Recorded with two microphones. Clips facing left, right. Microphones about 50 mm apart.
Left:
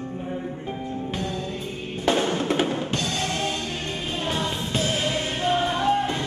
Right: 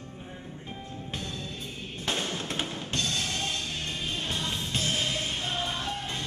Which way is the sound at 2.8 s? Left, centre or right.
Centre.